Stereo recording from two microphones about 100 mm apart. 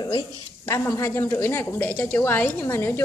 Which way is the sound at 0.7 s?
30° left (ahead or behind).